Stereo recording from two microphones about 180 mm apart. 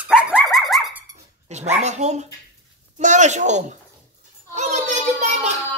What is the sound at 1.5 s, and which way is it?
A child's voice, 40° right (ahead or behind).